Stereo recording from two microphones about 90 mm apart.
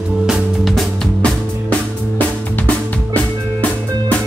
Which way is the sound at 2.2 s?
15° left (ahead or behind).